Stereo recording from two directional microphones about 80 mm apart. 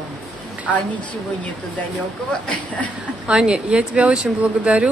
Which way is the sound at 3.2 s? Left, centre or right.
Centre.